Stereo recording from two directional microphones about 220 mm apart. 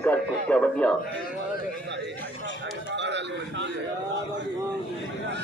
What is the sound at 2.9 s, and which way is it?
Speech, 55° right (ahead or behind).